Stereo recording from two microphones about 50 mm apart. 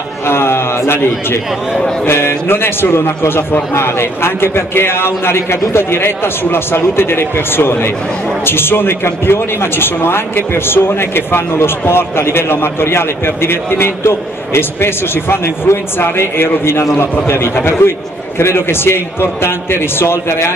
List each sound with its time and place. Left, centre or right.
0.3 s a man's voice: left